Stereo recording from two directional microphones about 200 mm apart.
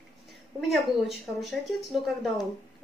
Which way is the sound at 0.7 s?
Centre (ahead or behind).